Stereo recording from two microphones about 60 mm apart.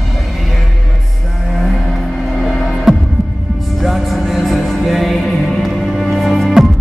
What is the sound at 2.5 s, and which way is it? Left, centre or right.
Hum, centre.